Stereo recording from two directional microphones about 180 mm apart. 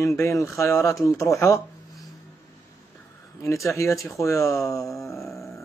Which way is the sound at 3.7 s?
15° left (ahead or behind).